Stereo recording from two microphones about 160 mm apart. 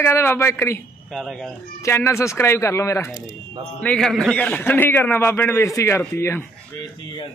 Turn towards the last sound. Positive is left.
turn(degrees=15)  # may be behind; listen again after turning